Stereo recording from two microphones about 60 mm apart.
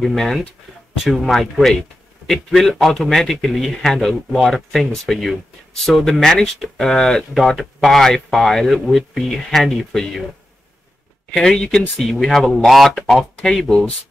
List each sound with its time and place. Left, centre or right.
0.0 s speech: centre
11.3 s speech: centre